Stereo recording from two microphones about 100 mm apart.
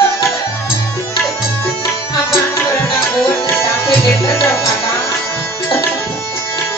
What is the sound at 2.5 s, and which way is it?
Music, 25° left (ahead or behind).